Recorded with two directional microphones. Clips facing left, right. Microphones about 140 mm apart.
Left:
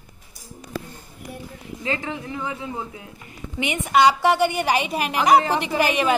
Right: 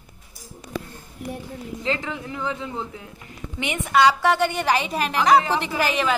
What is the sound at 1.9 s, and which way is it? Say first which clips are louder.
A woman's voice: even; 10° left (ahead or behind).